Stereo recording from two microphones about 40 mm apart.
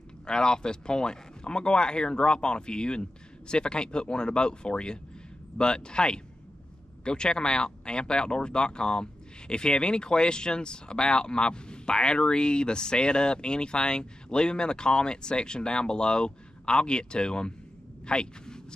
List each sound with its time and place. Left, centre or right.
0.3 s speech: left